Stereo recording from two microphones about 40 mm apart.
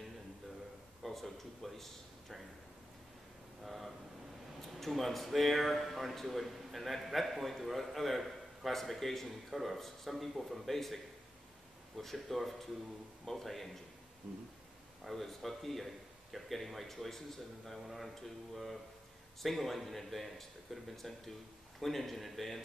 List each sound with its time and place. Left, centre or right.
1.0 s speech: centre
3.6 s a sound: centre
4.6 s a man's voice: centre
12.0 s a man's voice: centre
14.2 s a sound: right
15.0 s a man's voice: centre